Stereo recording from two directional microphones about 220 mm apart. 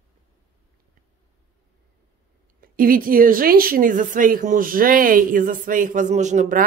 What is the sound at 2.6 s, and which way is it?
Speech, 40° right (ahead or behind).